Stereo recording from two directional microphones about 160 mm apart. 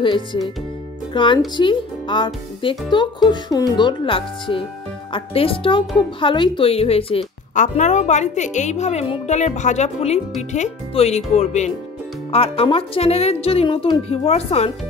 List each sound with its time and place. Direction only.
0.0 s speech: 30° left (ahead or behind)
7.5 s a woman's voice: 50° left (ahead or behind)